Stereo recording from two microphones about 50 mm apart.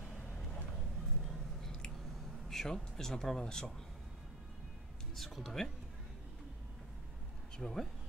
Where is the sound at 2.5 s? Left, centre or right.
Centre.